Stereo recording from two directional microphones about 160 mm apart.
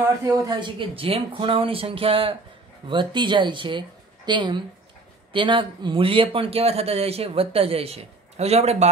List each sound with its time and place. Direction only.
0.0 s speech: 20° right (ahead or behind); by 8.8 s 40° right (ahead or behind)